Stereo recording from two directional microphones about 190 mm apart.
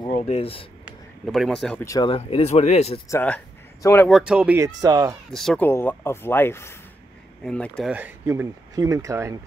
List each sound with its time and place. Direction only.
0.1 s speech: 30° left (ahead or behind)
0.8 s speech: centre (ahead or behind)
1.9 s speech: 25° left (ahead or behind)
3.1 s speech: 10° left (ahead or behind)
4.1 s speech: 5° right (ahead or behind)
4.6 s speech: 20° right (ahead or behind)
5.3 s speech: centre (ahead or behind)
5.7 s speech: 10° left (ahead or behind)
7.9 s speech: 10° right (ahead or behind)